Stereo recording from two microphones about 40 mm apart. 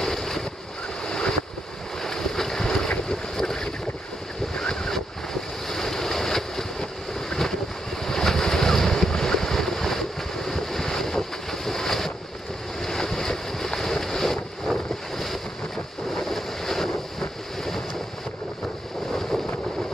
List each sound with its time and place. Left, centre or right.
0.0 s waves: centre
1.0 s waves: left
2.0 s boat: centre
4.6 s waves: centre
5.7 s boat: centre
8.0 s waves: centre
12.8 s boat: centre
16.1 s waves: centre